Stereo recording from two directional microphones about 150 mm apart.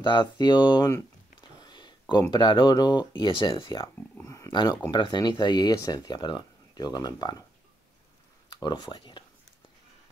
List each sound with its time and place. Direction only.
0.0 s speech: 30° left (ahead or behind)
8.5 s speech: 30° left (ahead or behind)